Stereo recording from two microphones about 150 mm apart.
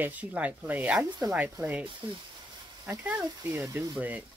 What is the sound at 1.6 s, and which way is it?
Speech, 25° right (ahead or behind).